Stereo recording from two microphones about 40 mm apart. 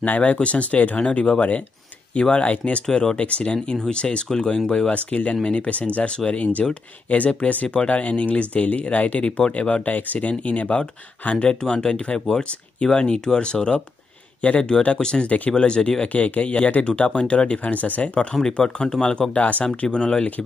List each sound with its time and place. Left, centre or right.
0.0 s speech: left
14.4 s speech: left
14.8 s speech: left
16.1 s speech: left
17.6 s speech: left
18.6 s speech: centre